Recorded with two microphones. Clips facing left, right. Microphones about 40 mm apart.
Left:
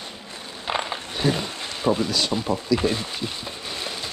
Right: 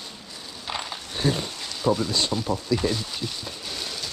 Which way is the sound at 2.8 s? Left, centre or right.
Left.